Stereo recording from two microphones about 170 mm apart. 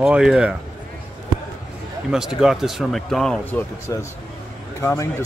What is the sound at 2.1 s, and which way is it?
Speech, 5° right (ahead or behind).